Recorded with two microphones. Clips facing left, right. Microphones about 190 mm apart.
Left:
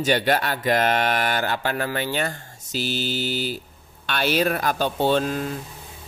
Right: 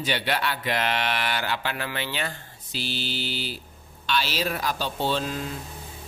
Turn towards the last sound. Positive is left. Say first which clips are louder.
# left 6 dB
turn(degrees=55)  # may be behind; listen again after turning